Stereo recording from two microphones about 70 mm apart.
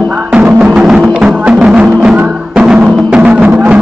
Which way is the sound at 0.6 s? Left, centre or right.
Centre.